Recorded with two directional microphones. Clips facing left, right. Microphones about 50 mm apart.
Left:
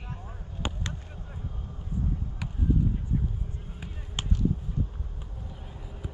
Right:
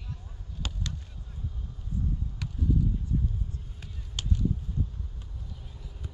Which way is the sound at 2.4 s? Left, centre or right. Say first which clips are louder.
Left 1 dB; centre.